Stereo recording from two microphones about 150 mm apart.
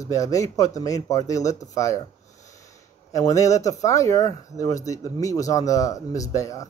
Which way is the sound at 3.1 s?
20° left (ahead or behind).